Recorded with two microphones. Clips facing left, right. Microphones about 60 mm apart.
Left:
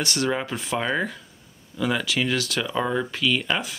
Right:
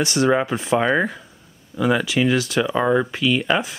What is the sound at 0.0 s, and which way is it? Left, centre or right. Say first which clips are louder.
Speech: right 7 dB; centre.